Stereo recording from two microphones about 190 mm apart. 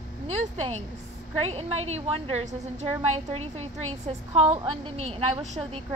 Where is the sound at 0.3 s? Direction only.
35° right (ahead or behind).